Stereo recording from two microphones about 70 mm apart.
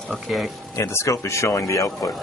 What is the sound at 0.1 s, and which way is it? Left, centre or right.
Speech, centre.